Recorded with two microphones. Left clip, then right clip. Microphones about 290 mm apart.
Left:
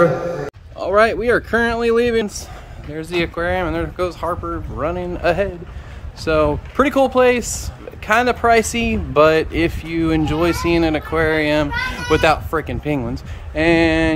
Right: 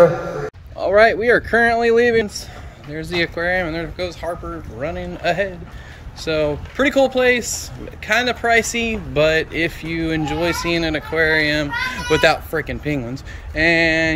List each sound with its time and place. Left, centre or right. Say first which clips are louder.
0.7 s speech: right 2 dB; centre